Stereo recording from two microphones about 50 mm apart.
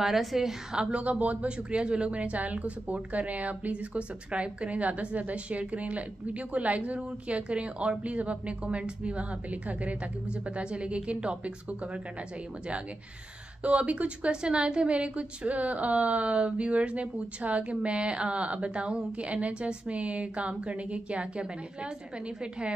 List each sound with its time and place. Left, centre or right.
0.0 s a woman's voice: centre
1.0 s a woman's voice: right
13.6 s a woman's voice: right